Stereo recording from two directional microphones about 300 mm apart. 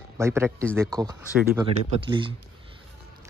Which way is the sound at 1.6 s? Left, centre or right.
Centre.